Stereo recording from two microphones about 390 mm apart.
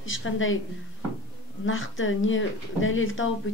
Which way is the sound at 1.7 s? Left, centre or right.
Left.